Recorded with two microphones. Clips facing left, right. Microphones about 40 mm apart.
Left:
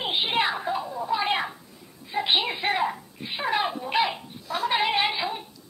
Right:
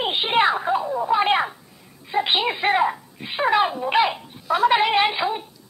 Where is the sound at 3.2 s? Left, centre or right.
Right.